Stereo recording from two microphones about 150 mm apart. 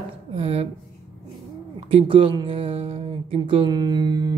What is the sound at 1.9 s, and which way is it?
A man's voice, 40° right (ahead or behind).